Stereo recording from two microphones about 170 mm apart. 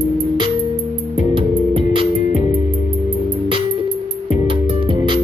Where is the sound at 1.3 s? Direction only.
30° right (ahead or behind).